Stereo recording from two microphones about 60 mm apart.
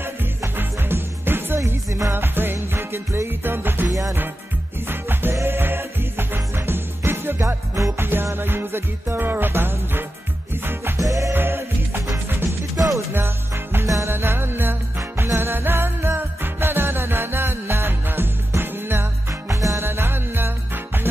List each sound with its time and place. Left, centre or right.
0.6 s music: right
1.9 s music: right
2.1 s music: right
8.0 s music: right
11.0 s music: right
11.3 s music: right
13.1 s music: right
15.0 s music: right
19.5 s music: right
19.8 s music: right